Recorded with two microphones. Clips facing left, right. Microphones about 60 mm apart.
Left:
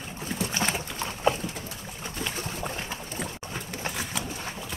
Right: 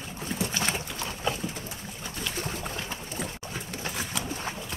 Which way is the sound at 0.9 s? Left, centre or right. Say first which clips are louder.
Left 5 dB; left.